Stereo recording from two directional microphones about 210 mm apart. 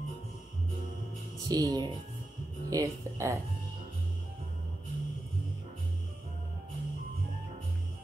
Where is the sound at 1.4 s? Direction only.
20° right (ahead or behind).